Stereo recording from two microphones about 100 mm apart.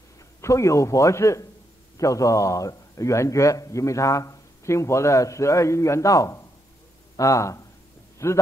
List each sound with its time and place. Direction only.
0.4 s a man's voice: 30° left (ahead or behind)